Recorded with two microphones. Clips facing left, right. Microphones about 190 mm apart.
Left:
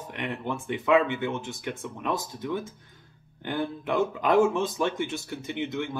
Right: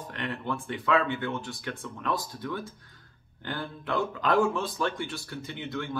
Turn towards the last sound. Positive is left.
turn(degrees=20)  # may be behind; listen again after turning